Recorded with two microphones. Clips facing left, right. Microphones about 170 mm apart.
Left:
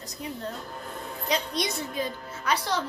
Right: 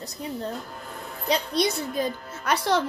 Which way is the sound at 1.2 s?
35° right (ahead or behind).